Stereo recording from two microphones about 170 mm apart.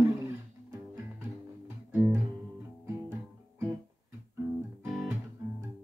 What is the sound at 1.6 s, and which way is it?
Music, 10° right (ahead or behind).